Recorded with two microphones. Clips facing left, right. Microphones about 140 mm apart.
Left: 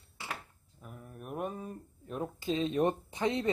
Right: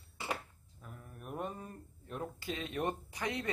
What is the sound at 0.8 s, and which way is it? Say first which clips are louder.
Speech: left 3 dB; 10° left (ahead or behind).